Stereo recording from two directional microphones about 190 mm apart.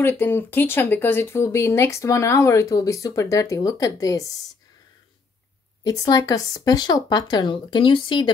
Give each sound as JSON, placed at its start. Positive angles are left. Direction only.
{"t": 0.0, "sound": "speech", "side_deg": 10}
{"t": 5.9, "sound": "speech", "side_deg": 20}